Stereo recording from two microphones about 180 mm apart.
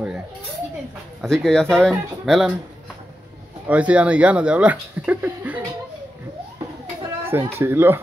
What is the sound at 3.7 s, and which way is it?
Speech, 5° right (ahead or behind).